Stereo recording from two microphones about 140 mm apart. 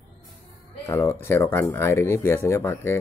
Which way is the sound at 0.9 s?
15° left (ahead or behind).